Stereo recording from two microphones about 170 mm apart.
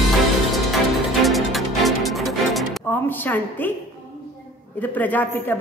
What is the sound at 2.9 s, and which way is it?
Speech, 10° left (ahead or behind).